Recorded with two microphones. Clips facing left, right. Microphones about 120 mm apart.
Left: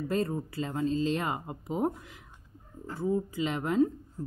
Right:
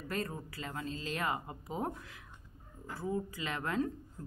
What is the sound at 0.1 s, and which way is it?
Speech, 25° left (ahead or behind).